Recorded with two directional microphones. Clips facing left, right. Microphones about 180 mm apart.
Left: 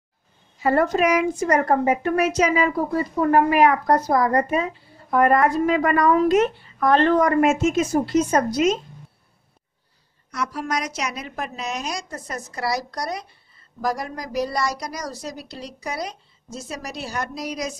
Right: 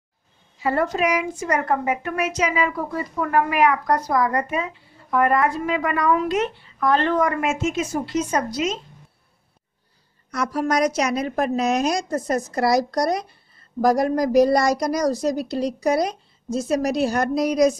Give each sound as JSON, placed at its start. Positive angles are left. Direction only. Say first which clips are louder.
{"t": 0.6, "sound": "a woman's voice", "louder": "left 3 dB", "side_deg": 45}
{"t": 10.3, "sound": "a woman's voice", "louder": "right 5 dB", "side_deg": -45}